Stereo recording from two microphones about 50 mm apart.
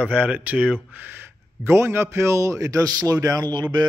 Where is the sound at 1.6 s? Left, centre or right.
Right.